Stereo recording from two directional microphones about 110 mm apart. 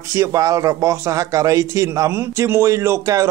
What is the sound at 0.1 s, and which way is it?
A man's voice, 30° right (ahead or behind).